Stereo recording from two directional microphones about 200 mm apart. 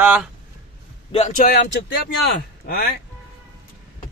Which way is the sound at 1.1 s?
30° left (ahead or behind).